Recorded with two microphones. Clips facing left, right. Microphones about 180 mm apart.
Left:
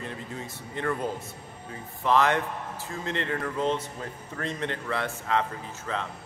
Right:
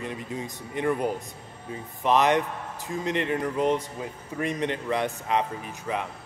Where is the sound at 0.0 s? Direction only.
15° right (ahead or behind).